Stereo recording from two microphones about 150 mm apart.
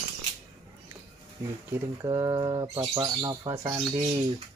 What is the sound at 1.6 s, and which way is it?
Speech, 20° right (ahead or behind).